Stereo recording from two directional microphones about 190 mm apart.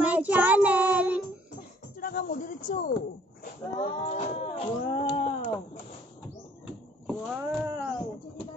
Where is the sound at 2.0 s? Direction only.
50° left (ahead or behind).